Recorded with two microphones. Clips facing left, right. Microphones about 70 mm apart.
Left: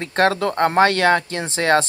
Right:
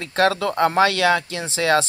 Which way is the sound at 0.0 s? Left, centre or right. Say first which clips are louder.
Left 1 dB; left.